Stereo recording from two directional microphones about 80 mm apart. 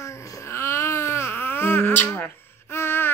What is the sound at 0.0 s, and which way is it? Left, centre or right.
Baby cry, left.